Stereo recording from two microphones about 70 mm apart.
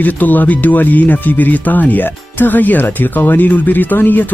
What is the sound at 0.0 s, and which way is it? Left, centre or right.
Speech, left.